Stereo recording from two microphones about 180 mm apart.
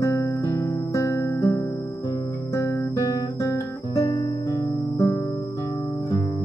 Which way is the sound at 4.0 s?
30° left (ahead or behind).